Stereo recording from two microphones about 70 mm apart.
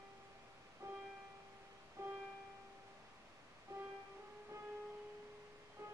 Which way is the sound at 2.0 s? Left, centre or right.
Right.